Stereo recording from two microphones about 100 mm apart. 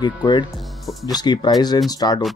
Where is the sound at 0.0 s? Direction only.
45° left (ahead or behind).